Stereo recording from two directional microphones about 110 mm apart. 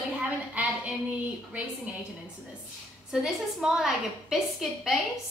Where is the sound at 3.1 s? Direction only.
5° right (ahead or behind).